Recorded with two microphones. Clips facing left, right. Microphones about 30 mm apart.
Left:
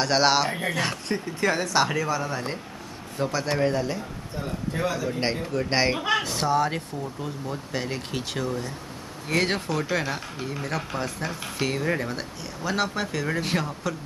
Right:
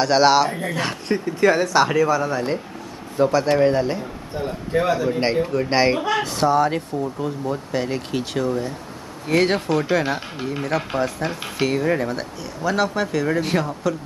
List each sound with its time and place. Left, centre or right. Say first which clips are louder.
0.0 s speech: right 6 dB; centre
0.5 s speech: right 2 dB; centre
0.7 s a man's voice: right 4 dB; centre; by 5.0 s right
5.0 s speech: right 7 dB; centre
8.5 s speech: right 6 dB; centre
10.0 s speech: right 6 dB; right
11.6 s speech: right 6 dB; centre